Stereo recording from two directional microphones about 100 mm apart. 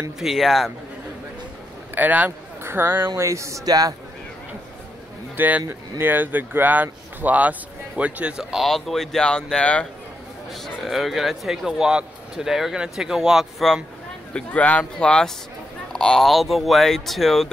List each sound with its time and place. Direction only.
0.2 s speech: centre (ahead or behind)
2.0 s speech: 15° right (ahead or behind); by 3.9 s 40° right (ahead or behind)
5.3 s a man's voice: 20° right (ahead or behind); by 9.8 s 10° left (ahead or behind)
10.5 s speech: centre (ahead or behind)
14.3 s speech: 15° left (ahead or behind)